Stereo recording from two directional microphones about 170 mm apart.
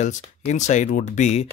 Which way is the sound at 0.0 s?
45° left (ahead or behind).